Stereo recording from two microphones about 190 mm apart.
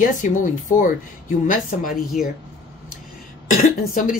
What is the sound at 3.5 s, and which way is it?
Speech, 45° left (ahead or behind).